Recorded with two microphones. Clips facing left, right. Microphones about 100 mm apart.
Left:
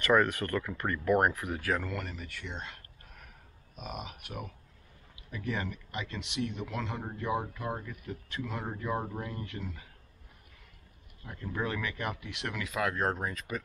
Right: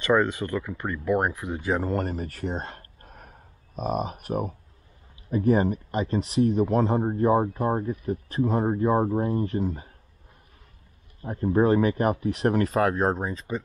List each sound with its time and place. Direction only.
0.0 s speech: 20° right (ahead or behind); by 9.8 s 35° right (ahead or behind)
11.2 s speech: 40° right (ahead or behind)